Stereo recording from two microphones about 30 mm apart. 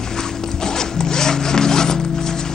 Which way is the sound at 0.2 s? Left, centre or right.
Centre.